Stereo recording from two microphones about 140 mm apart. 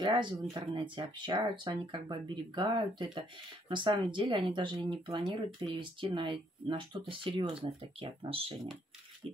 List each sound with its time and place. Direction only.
0.0 s speech: 30° right (ahead or behind)